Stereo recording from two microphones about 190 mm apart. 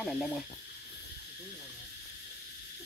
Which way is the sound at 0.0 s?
5° left (ahead or behind).